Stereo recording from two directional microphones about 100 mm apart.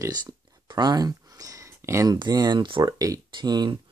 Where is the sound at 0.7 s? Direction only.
45° right (ahead or behind).